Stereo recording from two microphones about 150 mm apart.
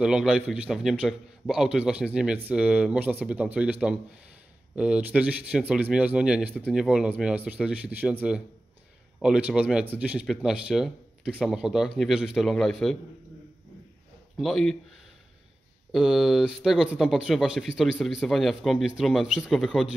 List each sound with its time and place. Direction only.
0.0 s speech: 5° right (ahead or behind)
14.3 s speech: centre (ahead or behind)
15.9 s speech: centre (ahead or behind)